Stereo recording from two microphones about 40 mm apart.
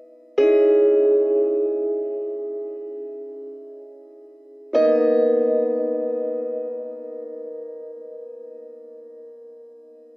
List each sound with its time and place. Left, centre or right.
0.4 s music: centre
1.2 s music: centre
5.0 s music: centre
7.3 s music: centre